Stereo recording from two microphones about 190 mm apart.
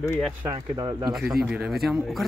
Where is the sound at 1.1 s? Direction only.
Centre (ahead or behind).